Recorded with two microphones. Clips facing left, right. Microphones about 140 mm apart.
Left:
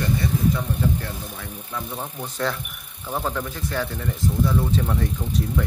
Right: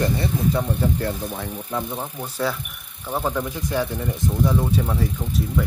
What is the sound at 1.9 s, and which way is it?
Speech, 10° right (ahead or behind).